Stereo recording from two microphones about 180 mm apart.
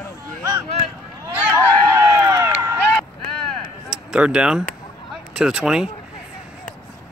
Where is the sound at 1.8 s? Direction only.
20° right (ahead or behind).